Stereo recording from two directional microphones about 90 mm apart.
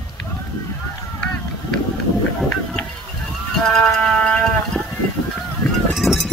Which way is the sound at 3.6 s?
10° left (ahead or behind).